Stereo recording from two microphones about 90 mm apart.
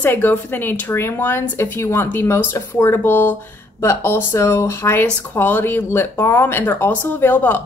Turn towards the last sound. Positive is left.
turn(degrees=20)  # may be behind; listen again after turning